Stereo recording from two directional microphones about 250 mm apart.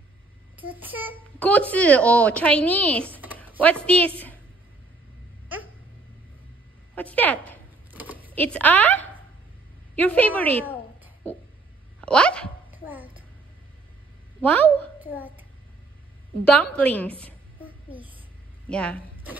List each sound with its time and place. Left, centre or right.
0.7 s a sound: centre
1.4 s a woman's voice: centre
7.0 s a sound: centre
7.9 s a sound: centre
8.4 s a woman's voice: centre
12.0 s speech: centre
12.7 s music: centre
14.4 s a woman's voice: centre
15.0 s a child's voice: centre
16.7 s a woman's voice: centre
17.9 s a woman's voice: right
18.7 s a woman's voice: centre